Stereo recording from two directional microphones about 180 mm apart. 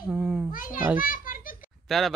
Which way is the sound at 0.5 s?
50° left (ahead or behind).